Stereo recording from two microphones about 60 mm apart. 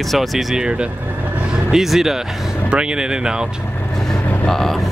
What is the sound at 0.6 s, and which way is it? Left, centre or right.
Speech, centre.